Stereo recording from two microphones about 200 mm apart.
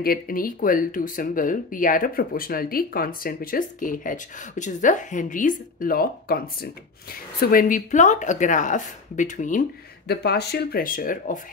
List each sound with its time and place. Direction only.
0.0 s speech: 45° left (ahead or behind)
10.0 s speech: 55° left (ahead or behind)